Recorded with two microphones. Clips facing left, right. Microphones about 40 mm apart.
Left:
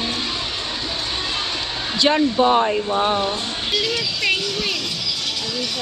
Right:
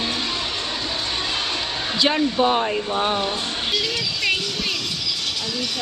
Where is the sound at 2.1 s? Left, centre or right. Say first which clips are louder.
Left 5 dB; centre.